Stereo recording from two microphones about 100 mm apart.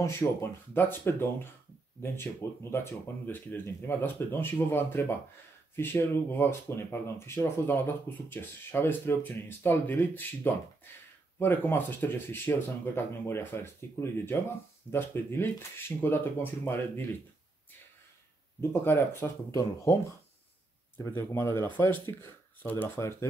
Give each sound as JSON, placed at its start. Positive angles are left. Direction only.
{"t": 0.0, "sound": "speech", "side_deg": 30}
{"t": 18.6, "sound": "speech", "side_deg": 20}
{"t": 19.5, "sound": "speech", "side_deg": 35}
{"t": 21.0, "sound": "speech", "side_deg": 25}